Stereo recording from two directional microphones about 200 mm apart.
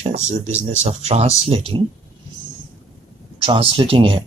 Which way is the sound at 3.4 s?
25° right (ahead or behind).